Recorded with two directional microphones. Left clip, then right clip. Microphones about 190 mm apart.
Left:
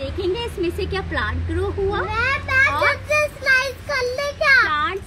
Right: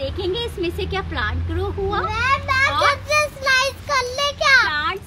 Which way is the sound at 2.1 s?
55° right (ahead or behind).